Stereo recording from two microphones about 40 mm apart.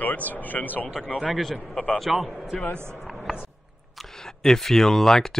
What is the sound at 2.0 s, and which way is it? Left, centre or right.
Speech, centre.